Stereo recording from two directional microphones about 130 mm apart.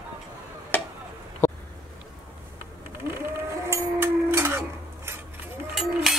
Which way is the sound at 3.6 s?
20° right (ahead or behind).